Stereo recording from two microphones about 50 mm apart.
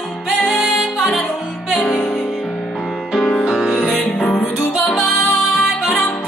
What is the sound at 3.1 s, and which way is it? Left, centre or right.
Music, left.